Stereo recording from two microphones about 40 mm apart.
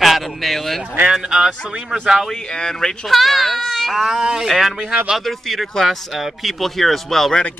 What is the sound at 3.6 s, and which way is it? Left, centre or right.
Baby cry, centre.